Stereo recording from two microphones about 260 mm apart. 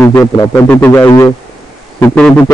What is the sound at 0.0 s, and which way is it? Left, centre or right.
Speech, centre.